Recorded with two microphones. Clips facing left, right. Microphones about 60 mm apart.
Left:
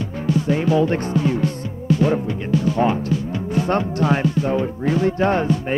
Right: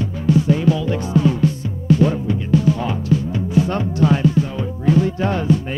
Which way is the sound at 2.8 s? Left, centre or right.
Left.